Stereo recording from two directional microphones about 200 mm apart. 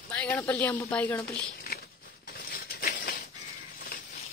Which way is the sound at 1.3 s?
50° left (ahead or behind).